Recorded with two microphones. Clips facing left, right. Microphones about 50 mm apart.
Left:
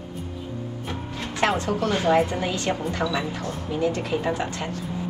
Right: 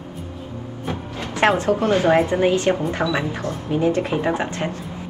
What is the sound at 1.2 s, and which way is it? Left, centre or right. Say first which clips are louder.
Music: right 4 dB; right.